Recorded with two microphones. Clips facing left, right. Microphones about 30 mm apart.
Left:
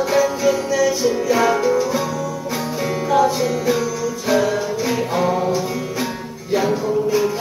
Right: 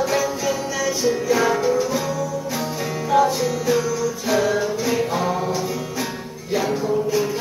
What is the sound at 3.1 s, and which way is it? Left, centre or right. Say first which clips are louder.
Music: left 1 dB; centre.